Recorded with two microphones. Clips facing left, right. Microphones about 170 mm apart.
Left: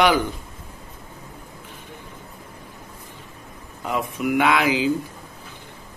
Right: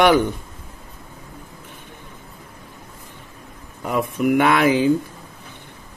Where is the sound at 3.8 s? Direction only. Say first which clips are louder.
Right 4 dB; 50° right (ahead or behind).